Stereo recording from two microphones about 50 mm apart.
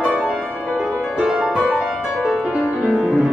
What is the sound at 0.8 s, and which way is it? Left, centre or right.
Music, centre.